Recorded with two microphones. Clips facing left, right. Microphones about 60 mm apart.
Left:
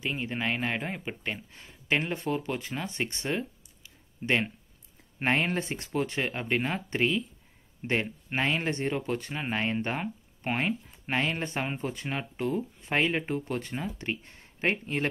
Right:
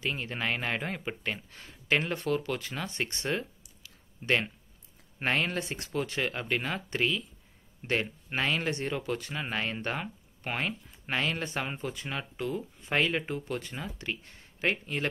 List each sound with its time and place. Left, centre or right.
0.0 s speech: centre
3.3 s a sound: centre
5.2 s speech: left
12.9 s speech: left